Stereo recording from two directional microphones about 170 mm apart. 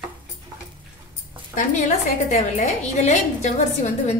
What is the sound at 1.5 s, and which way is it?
A woman's voice, 45° left (ahead or behind).